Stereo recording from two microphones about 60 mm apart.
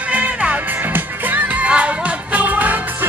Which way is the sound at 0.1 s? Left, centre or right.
Right.